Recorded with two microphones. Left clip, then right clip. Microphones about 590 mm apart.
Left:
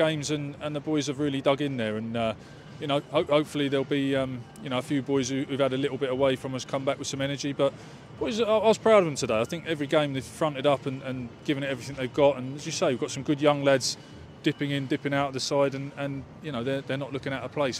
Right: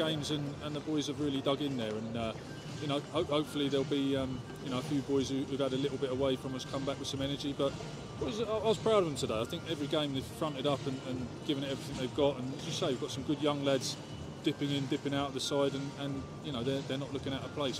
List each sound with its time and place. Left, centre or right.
0.0 s speech: left